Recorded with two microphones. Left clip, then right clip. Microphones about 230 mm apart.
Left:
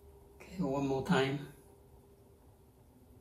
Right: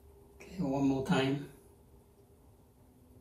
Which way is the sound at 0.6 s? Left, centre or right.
Centre.